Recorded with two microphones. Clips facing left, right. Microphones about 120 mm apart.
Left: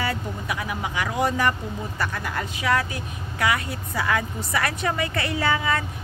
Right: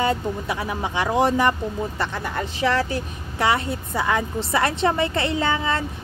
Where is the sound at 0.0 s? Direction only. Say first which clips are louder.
Right 6 dB; 25° right (ahead or behind).